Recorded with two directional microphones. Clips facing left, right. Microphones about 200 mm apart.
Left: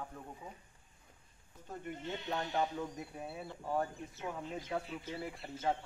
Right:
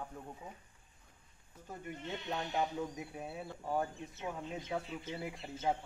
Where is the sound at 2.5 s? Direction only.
15° right (ahead or behind).